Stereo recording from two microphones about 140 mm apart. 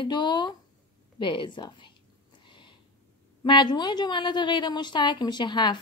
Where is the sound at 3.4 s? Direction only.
35° left (ahead or behind).